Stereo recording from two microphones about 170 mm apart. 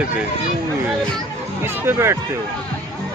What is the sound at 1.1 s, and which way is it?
Speech, 15° right (ahead or behind).